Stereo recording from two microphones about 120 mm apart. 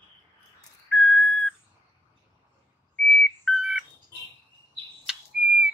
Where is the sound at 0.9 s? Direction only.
5° left (ahead or behind).